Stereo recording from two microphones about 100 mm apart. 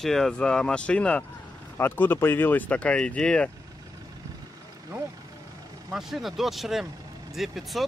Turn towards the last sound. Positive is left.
turn(degrees=0)  # may be behind; listen again after turning